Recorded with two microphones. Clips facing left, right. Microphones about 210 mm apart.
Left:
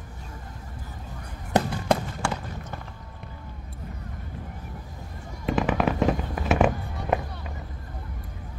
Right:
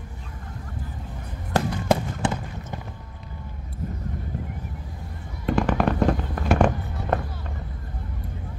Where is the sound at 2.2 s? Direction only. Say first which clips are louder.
Right 4 dB; 20° right (ahead or behind).